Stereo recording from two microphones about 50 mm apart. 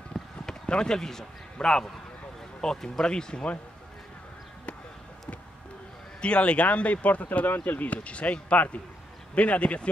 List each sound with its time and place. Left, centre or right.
0.1 s run: centre
2.6 s speech: centre
6.2 s speech: left